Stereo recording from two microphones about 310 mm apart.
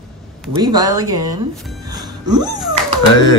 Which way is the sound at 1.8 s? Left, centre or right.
Centre.